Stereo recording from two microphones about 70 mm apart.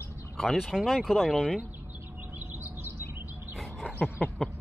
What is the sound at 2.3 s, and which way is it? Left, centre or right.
Bird, right.